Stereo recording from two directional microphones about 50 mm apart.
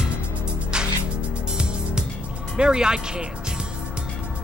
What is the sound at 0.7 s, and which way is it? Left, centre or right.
Music, centre.